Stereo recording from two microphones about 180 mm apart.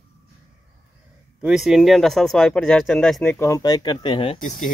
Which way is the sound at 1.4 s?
5° right (ahead or behind).